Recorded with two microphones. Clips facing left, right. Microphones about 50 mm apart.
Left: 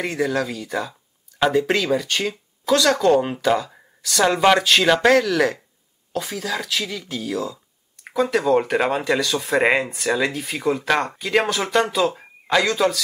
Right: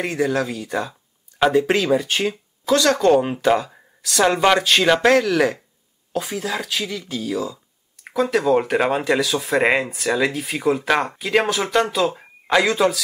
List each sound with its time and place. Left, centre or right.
0.0 s speech: centre
2.6 s speech: centre
3.3 s speech: centre
3.7 s speech: centre